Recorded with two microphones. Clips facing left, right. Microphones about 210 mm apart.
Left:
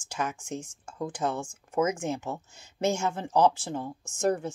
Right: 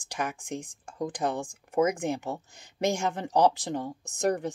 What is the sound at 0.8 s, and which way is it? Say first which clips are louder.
Speech: right 1 dB; 35° right (ahead or behind).